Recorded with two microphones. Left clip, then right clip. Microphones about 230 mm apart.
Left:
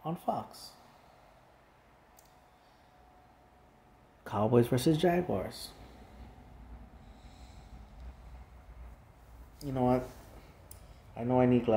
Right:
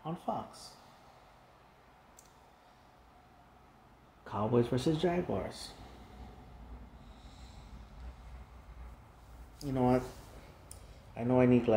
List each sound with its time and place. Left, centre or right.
0.0 s speech: centre
4.2 s speech: left
9.6 s speech: centre
11.1 s speech: centre